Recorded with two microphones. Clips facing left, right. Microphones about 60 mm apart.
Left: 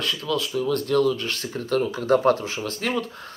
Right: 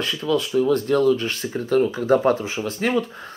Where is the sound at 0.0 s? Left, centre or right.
Right.